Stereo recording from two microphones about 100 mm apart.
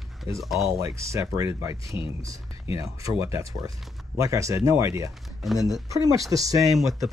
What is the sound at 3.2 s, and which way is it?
Speech, 30° right (ahead or behind).